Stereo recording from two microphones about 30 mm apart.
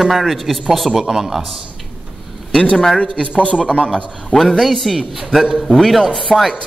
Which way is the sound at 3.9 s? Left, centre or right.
Centre.